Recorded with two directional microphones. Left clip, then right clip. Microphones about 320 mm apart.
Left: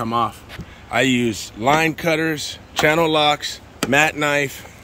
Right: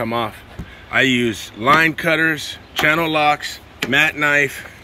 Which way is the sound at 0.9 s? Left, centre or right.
Centre.